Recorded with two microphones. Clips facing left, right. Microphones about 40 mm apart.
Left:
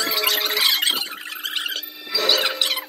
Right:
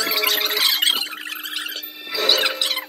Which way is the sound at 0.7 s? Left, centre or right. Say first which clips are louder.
Right 2 dB; right.